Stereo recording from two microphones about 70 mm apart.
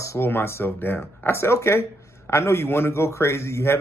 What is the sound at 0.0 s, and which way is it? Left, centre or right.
Speech, left.